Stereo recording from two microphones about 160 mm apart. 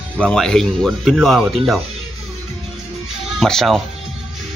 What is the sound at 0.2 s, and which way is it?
Speech, 5° left (ahead or behind).